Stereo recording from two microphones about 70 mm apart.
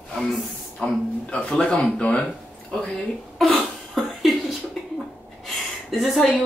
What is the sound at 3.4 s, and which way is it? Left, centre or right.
Cough, centre.